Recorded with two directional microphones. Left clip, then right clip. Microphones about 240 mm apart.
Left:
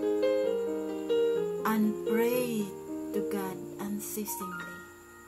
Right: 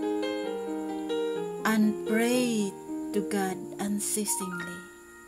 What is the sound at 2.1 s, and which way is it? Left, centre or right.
Speech, right.